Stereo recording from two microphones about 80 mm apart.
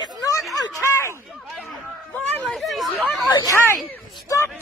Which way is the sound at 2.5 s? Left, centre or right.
Centre.